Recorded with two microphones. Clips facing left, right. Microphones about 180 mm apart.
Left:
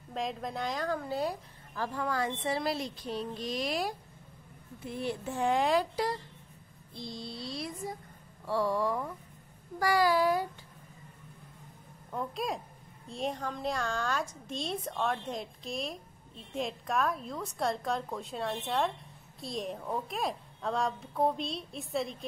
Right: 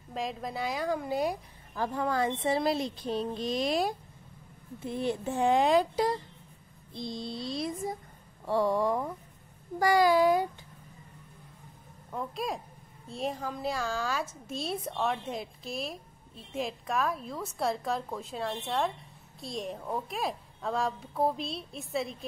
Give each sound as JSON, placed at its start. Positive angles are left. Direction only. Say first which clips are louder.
{"t": 0.1, "sound": "a woman's voice", "louder": "even", "side_deg": 0}
{"t": 12.1, "sound": "a woman's voice", "louder": "even", "side_deg": 0}